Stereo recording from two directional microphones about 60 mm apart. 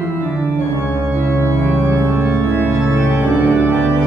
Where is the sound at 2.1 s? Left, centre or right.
Right.